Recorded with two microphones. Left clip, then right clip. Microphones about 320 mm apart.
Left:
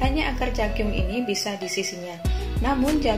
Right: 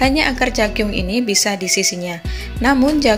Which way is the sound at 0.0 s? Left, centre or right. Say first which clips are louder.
Right 9 dB; right.